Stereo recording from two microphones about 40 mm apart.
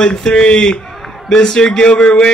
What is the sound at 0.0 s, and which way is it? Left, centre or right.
Speech, centre.